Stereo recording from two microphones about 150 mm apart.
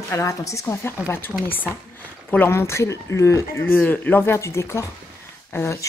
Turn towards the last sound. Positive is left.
turn(degrees=20)  # may be behind; listen again after turning